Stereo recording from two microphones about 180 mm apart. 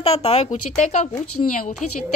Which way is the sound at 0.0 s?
35° left (ahead or behind).